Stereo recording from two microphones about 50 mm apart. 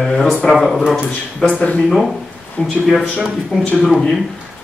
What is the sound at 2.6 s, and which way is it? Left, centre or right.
Speech, left.